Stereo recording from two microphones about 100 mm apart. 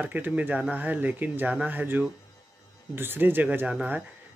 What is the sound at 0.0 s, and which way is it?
Speech, 15° right (ahead or behind).